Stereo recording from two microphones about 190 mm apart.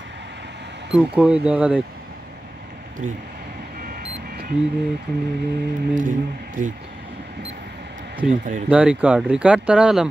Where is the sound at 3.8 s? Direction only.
50° right (ahead or behind).